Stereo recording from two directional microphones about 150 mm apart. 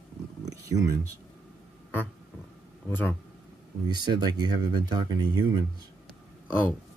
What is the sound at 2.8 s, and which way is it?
Speech, 10° left (ahead or behind).